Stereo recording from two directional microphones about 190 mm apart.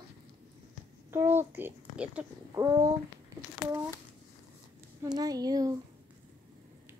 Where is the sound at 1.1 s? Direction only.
10° right (ahead or behind).